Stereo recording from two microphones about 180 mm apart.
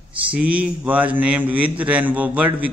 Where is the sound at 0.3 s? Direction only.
5° right (ahead or behind).